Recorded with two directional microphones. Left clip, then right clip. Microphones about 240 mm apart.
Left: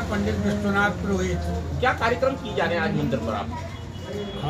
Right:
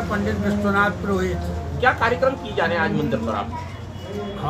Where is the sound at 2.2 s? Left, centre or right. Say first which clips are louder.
Right 3 dB; left.